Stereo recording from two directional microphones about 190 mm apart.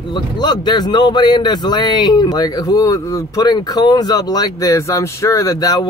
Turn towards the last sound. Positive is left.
turn(degrees=20)  # may be behind; listen again after turning